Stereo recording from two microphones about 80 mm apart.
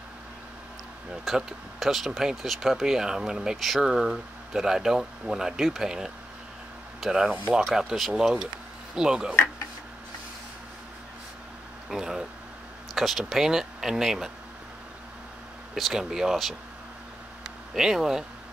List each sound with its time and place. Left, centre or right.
1.2 s speech: centre
11.9 s speech: centre
15.7 s speech: centre
17.7 s speech: centre